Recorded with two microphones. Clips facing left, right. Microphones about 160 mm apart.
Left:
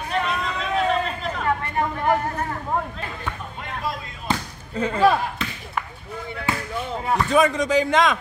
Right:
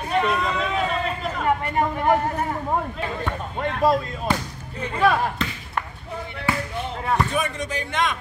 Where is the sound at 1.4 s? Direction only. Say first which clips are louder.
Right 2 dB; 20° right (ahead or behind).